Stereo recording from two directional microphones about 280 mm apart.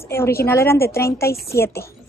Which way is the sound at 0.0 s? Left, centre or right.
Centre.